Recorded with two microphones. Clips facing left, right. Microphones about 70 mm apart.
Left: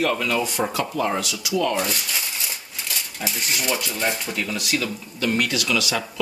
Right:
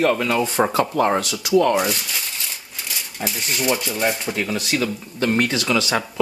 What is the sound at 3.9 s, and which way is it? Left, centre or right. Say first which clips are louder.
Speech: right 3 dB; centre.